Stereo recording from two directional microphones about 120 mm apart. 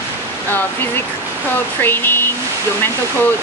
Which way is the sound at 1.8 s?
20° left (ahead or behind).